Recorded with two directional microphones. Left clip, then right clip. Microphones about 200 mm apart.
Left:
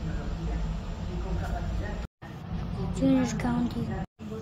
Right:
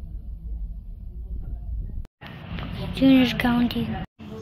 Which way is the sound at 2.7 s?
20° left (ahead or behind).